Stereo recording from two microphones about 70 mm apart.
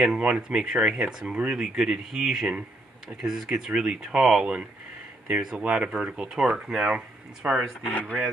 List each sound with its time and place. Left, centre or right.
0.2 s speech: centre
7.4 s speech: right
7.8 s speech: left